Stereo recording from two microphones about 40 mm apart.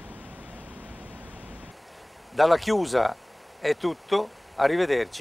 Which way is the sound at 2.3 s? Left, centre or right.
Centre.